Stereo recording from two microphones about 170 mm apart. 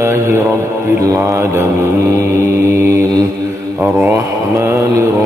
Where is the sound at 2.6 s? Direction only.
15° right (ahead or behind).